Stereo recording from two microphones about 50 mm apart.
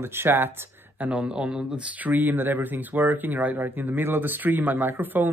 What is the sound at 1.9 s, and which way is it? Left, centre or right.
Speech, right.